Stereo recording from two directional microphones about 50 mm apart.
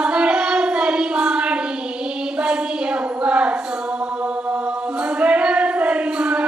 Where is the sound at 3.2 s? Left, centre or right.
Right.